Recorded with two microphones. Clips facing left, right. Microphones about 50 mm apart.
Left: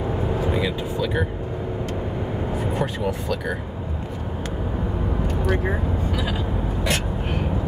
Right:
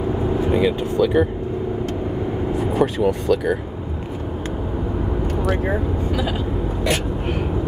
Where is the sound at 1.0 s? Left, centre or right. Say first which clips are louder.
Right 8 dB; centre.